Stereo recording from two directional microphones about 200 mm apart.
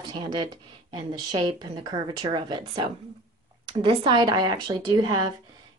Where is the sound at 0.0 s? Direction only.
20° right (ahead or behind).